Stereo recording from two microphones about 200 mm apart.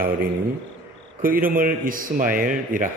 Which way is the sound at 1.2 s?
45° right (ahead or behind).